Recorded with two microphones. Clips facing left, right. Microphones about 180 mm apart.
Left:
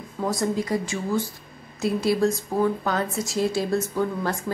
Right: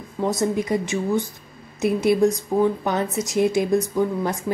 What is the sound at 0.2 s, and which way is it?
A woman's voice, 20° right (ahead or behind).